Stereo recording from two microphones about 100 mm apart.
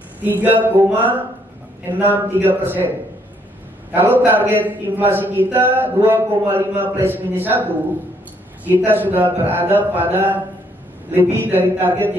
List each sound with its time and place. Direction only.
0.2 s a man's voice: 20° right (ahead or behind)
3.9 s a man's voice: 20° right (ahead or behind)